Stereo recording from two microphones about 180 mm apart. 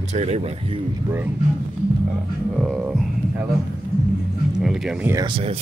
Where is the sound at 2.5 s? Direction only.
5° right (ahead or behind).